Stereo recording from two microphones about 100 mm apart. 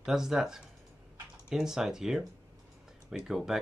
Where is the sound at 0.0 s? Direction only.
5° right (ahead or behind).